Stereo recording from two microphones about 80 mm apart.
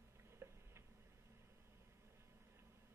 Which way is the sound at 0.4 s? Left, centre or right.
Right.